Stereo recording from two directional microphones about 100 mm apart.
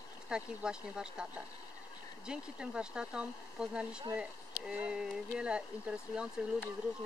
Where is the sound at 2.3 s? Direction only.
10° right (ahead or behind).